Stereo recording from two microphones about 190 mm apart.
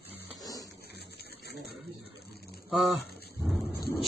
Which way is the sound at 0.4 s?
20° left (ahead or behind).